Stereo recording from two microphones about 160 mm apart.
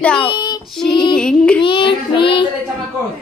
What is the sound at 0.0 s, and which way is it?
Child singing, 5° left (ahead or behind).